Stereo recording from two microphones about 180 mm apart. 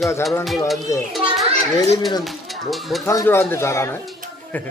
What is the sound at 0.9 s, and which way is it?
Speech, 20° left (ahead or behind).